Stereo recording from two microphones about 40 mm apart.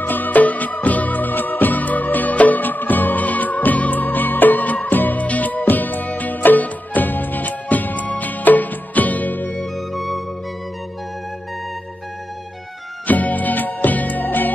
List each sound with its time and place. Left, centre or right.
0.0 s music: left
9.8 s music: centre
13.0 s music: left